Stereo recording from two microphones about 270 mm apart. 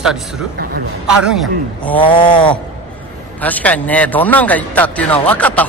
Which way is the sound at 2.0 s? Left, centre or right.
Centre.